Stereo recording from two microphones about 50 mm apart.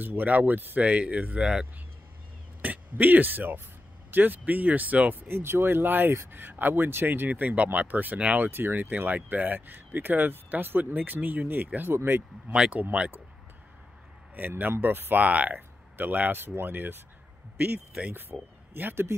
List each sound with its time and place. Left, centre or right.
0.0 s speech: right
0.7 s speech: right
1.4 s speech: centre
2.6 s a man's voice: right
5.3 s speech: right
8.4 s speech: right
8.9 s speech: right
12.8 s speech: right
14.8 s speech: right
16.3 s speech: right
18.1 s speech: right